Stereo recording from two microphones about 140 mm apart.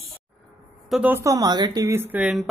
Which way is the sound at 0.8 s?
5° right (ahead or behind).